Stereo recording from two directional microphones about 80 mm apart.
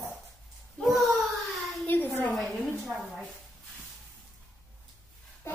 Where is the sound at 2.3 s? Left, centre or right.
Centre.